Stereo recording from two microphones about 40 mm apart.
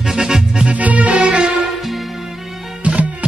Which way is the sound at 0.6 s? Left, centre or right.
Right.